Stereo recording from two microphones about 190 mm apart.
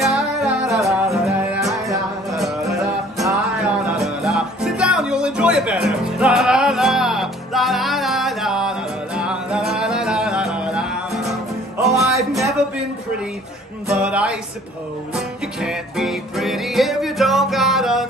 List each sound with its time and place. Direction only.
0.0 s music: centre (ahead or behind)
2.8 s music: 15° right (ahead or behind)
3.6 s music: centre (ahead or behind)
13.8 s music: 5° right (ahead or behind)